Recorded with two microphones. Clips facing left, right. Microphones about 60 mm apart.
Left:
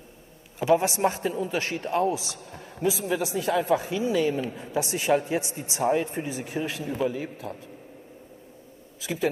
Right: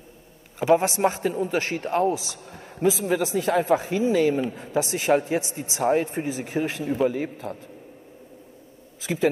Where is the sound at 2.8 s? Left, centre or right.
Right.